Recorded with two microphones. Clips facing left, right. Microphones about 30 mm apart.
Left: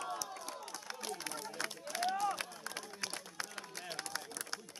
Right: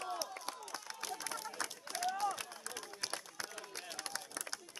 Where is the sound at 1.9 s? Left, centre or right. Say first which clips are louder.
Left 2 dB; centre.